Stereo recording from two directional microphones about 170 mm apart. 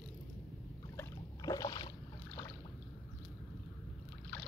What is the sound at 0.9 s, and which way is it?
Boat, 20° left (ahead or behind).